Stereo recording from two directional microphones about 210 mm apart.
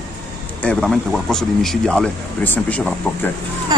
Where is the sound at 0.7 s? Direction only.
Centre (ahead or behind).